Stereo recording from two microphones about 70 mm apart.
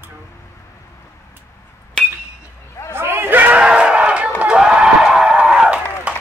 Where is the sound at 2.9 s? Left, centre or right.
Right; by 5.7 s centre.